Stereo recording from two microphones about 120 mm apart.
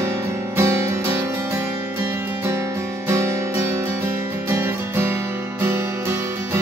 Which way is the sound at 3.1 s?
25° right (ahead or behind).